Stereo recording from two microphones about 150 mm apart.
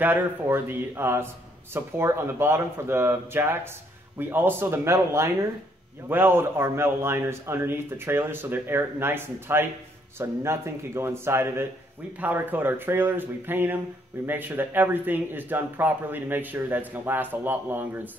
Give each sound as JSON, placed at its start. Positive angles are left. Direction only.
{"t": 0.0, "sound": "speech", "side_deg": -15}